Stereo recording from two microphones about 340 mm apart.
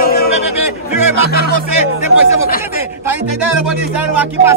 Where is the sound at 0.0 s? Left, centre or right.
Left.